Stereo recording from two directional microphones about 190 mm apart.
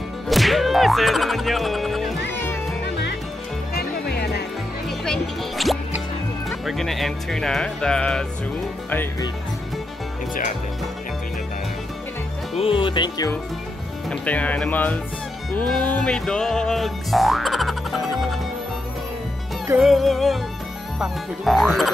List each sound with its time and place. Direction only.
0.3 s music: centre (ahead or behind)
3.7 s music: 55° left (ahead or behind)
4.8 s music: centre (ahead or behind)
12.5 s speech: 25° left (ahead or behind)
14.0 s speech: 5° left (ahead or behind)
15.5 s music: 5° left (ahead or behind)
19.7 s music: centre (ahead or behind)